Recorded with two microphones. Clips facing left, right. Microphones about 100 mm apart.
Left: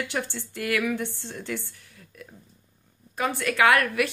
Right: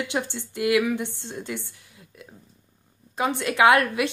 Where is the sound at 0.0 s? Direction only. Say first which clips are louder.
Right 2 dB; 20° right (ahead or behind).